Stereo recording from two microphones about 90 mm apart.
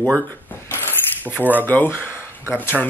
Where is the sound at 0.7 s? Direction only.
25° left (ahead or behind).